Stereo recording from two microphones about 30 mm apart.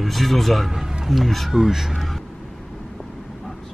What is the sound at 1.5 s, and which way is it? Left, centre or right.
Speech, centre.